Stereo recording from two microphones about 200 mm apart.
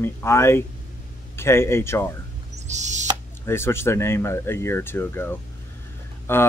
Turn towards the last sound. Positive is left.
turn(degrees=10)  # may be behind; listen again after turning